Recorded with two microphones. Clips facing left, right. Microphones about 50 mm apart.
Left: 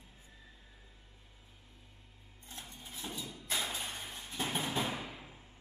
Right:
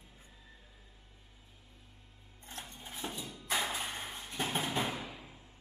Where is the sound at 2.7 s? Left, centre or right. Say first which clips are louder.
Right 2 dB; right.